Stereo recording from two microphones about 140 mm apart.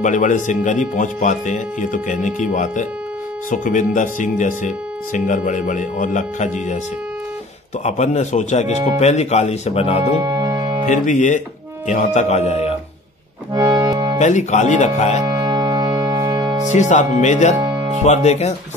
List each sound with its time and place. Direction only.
0.0 s speech: 65° left (ahead or behind)
7.8 s speech: 55° left (ahead or behind)
10.1 s music: 30° right (ahead or behind)
10.9 s speech: 60° left (ahead or behind)
13.5 s accordion: 30° right (ahead or behind)
14.1 s speech: 55° left (ahead or behind)
15.2 s music: 30° right (ahead or behind)
16.6 s speech: 60° left (ahead or behind)
17.6 s music: 35° right (ahead or behind)
18.0 s speech: 55° left (ahead or behind)